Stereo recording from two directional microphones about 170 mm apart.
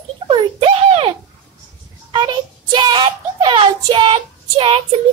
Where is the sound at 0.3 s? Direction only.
30° right (ahead or behind).